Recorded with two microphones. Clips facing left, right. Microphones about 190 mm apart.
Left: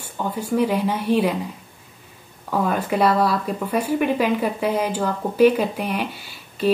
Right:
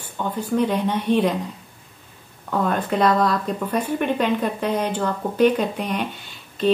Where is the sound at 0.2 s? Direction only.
10° left (ahead or behind).